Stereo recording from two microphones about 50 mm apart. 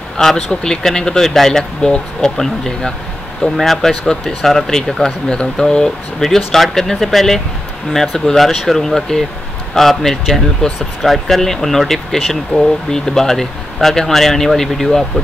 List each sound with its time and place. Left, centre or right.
0.2 s speech: centre